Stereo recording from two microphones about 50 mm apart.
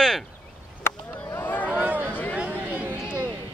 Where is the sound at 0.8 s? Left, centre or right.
Left.